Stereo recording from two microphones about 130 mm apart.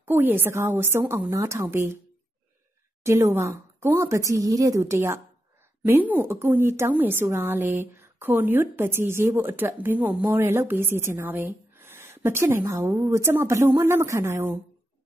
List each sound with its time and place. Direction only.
0.0 s a woman's voice: 15° right (ahead or behind)
3.0 s a woman's voice: 20° right (ahead or behind)